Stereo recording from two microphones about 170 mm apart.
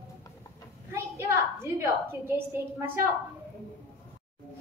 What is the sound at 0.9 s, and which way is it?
A woman's voice, 15° right (ahead or behind).